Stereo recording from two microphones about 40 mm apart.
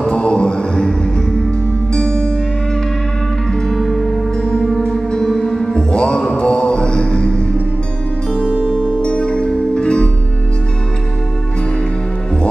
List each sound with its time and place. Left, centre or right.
0.0 s mantra: left
2.0 s music: left
3.6 s music: centre
4.7 s music: centre
5.8 s music: left